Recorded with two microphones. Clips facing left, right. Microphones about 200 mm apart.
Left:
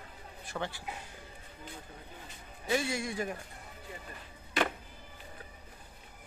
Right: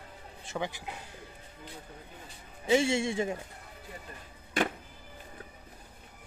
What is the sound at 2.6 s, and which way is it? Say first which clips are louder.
Speech: right 6 dB; 25° right (ahead or behind).